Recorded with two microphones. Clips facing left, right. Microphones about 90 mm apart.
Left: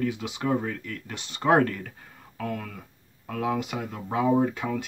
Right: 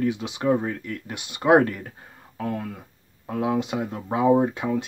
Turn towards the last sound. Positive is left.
turn(degrees=-20)  # may be behind; listen again after turning